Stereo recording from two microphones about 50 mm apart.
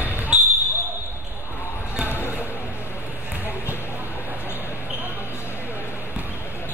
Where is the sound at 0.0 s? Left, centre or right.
Right.